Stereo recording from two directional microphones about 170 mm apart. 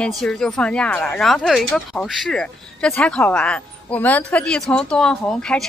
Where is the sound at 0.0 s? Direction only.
5° left (ahead or behind).